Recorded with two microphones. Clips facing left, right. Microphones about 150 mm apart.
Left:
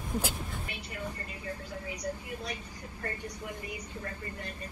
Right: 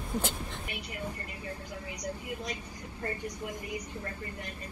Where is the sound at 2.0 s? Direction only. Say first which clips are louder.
Right 2 dB; 15° right (ahead or behind).